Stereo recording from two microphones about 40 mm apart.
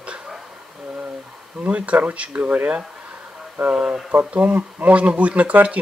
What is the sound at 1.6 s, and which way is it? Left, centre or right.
Speech, right.